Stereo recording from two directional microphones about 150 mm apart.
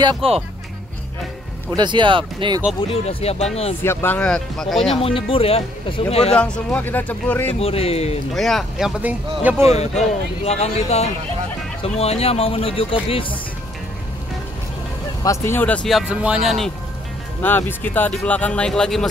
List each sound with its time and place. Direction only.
0.0 s speech: 35° right (ahead or behind)
1.8 s speech: 30° right (ahead or behind)
2.9 s speech: 40° left (ahead or behind)
3.8 s speech: 15° left (ahead or behind)
4.9 s speech: 40° left (ahead or behind)
6.3 s speech: 5° left (ahead or behind)
7.6 s speech: 40° left (ahead or behind)
8.4 s speech: centre (ahead or behind)
9.6 s speech: 45° left (ahead or behind)
15.2 s speech: 15° left (ahead or behind)
17.4 s speech: 15° left (ahead or behind)